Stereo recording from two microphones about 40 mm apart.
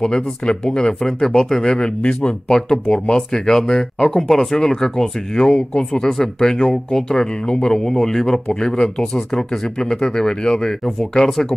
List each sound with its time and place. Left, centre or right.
0.0 s speech: left
5.4 s speech: left
6.0 s speech: centre